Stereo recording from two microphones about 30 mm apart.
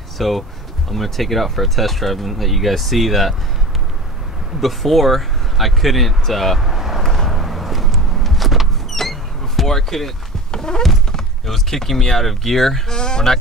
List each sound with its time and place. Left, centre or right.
0.2 s speech: centre
4.6 s speech: centre
6.6 s vehicle: centre
7.0 s vehicle: centre
8.9 s a sound: centre
9.7 s speech: centre
10.5 s clip-clop: left
11.4 s speech: centre
12.9 s speech: left